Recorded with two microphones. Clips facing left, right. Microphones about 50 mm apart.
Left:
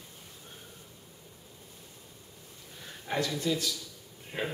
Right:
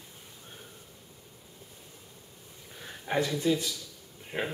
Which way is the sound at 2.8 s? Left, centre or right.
Centre.